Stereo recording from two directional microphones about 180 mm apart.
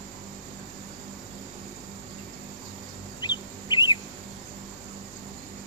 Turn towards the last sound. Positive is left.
turn(degrees=25)  # may be behind; listen again after turning